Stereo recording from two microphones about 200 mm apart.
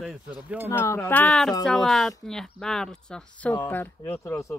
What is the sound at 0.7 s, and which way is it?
Speech, 10° left (ahead or behind).